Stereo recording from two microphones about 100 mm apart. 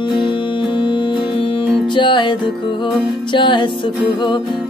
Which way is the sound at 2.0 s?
55° left (ahead or behind).